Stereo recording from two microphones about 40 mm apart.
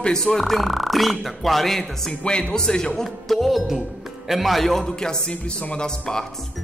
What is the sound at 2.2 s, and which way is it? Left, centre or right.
Speech, centre.